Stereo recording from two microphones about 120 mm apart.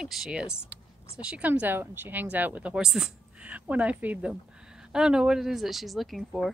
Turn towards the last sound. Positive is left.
turn(degrees=0)  # may be behind; listen again after turning